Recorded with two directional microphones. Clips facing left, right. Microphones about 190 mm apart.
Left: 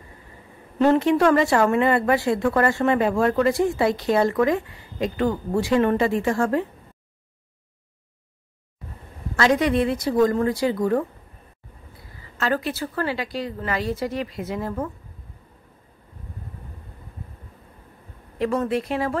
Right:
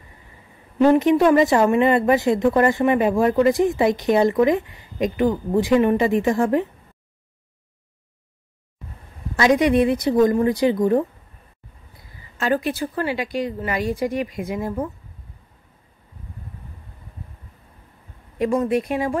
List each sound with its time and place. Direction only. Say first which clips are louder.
0.7 s speech: right 3 dB; 15° right (ahead or behind)
9.4 s a woman's voice: right 3 dB; 15° right (ahead or behind)
12.4 s speech: right 3 dB; 15° right (ahead or behind)
18.4 s speech: right 3 dB; 15° right (ahead or behind)